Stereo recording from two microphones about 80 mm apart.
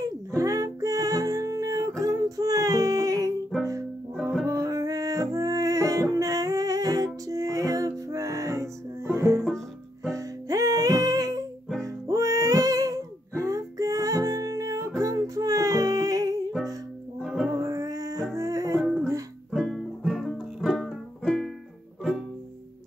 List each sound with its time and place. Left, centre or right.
0.4 s music: right
4.1 s music: centre
4.5 s music: right
10.1 s music: right
17.2 s music: centre
17.5 s music: right
18.8 s music: centre